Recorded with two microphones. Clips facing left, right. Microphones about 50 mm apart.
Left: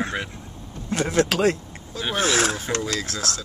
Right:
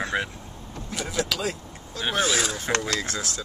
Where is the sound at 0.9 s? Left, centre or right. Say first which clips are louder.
Left 7 dB; left.